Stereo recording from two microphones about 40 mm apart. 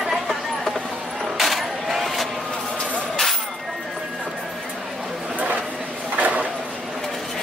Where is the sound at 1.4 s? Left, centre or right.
Centre.